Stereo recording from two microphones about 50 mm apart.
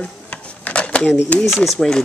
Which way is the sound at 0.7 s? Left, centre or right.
Left.